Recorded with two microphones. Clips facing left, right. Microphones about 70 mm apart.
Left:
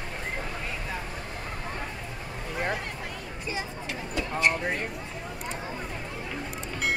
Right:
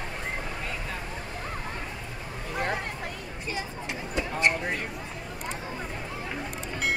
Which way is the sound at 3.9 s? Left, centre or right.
Right.